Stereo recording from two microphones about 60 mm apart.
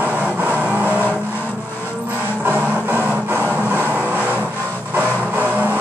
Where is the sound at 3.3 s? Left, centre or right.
Right.